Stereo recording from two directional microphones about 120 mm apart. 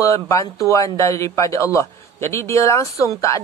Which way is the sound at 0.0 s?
25° left (ahead or behind).